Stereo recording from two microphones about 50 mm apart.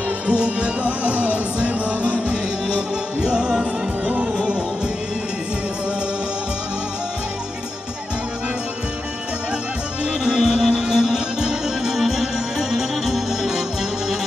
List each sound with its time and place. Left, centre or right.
0.3 s music: right
10.2 s music: centre